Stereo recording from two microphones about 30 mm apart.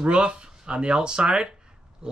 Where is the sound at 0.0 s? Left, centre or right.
Right.